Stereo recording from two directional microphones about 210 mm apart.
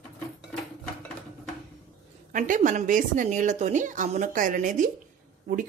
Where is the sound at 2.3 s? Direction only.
40° right (ahead or behind).